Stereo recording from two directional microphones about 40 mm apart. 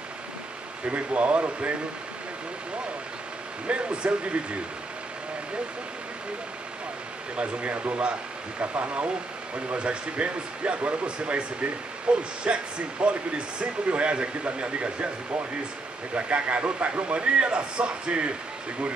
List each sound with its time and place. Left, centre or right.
0.8 s speech: right
3.6 s speech: right
7.3 s speech: right
16.2 s speech: right